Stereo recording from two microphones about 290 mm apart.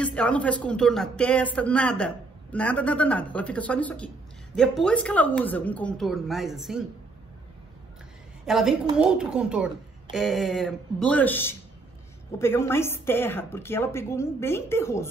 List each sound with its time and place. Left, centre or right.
0.0 s a man's voice: centre
8.5 s a man's voice: centre